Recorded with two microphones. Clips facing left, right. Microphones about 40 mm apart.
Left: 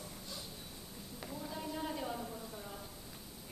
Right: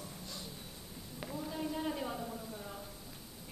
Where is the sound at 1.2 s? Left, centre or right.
Centre.